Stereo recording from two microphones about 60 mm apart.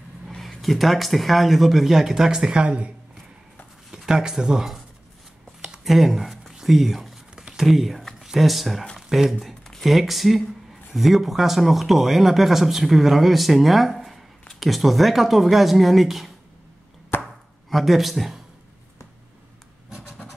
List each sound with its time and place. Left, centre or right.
0.4 s speech: centre
3.9 s speech: centre
5.6 s a sound: centre
8.9 s speech: centre
17.1 s chopping: left
17.6 s speech: centre